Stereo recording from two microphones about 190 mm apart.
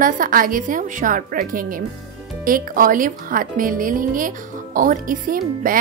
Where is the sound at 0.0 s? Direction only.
45° right (ahead or behind).